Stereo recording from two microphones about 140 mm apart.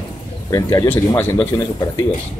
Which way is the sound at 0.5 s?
25° left (ahead or behind).